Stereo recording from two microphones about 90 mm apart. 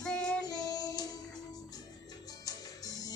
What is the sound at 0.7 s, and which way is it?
Music, 45° left (ahead or behind).